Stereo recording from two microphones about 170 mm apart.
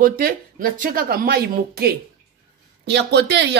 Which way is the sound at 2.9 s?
80° right.